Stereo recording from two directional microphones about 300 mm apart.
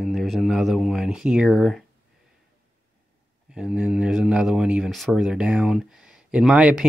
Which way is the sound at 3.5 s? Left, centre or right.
Centre.